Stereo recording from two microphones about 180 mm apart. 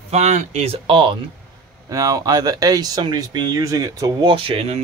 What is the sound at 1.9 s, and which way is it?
Speech, 20° right (ahead or behind).